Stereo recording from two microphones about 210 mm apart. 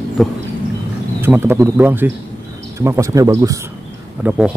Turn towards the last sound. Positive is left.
turn(degrees=-10)  # may be behind; listen again after turning